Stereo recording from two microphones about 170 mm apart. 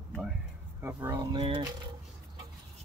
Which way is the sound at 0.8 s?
15° right (ahead or behind).